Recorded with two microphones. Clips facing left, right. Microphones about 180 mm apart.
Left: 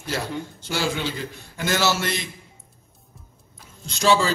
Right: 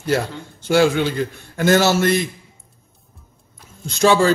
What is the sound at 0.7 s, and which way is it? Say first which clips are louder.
A man's voice: right 11 dB; 55° right (ahead or behind).